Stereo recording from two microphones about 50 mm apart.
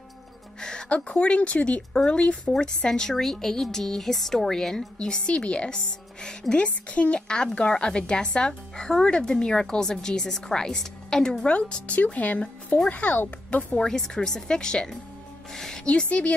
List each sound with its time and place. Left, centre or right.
0.6 s music: centre
0.8 s speech: left
7.2 s speech: centre
11.9 s speech: left
13.7 s speech: centre
15.9 s speech: left